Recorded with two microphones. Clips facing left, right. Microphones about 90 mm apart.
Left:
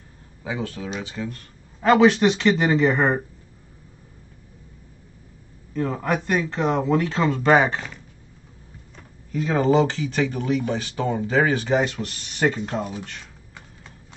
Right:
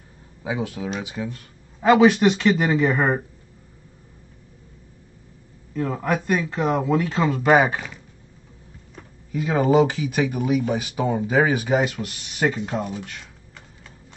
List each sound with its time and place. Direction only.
0.4 s speech: 15° right (ahead or behind)
5.7 s speech: centre (ahead or behind)
9.3 s speech: 5° right (ahead or behind)